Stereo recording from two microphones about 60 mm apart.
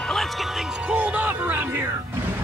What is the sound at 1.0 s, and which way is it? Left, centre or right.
Music, right.